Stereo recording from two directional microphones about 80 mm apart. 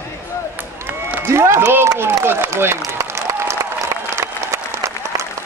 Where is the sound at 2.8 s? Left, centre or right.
Right.